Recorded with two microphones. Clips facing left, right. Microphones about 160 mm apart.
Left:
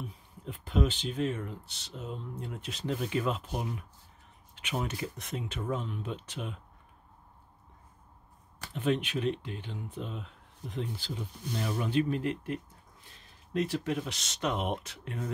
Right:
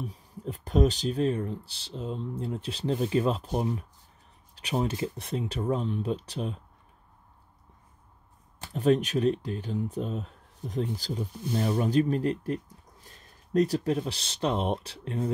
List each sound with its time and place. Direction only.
0.0 s speech: 40° right (ahead or behind)
8.7 s speech: 40° right (ahead or behind)